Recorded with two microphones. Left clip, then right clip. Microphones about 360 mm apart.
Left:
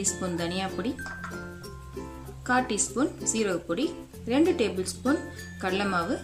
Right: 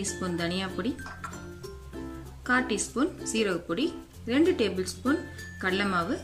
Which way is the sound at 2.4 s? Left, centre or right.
Centre.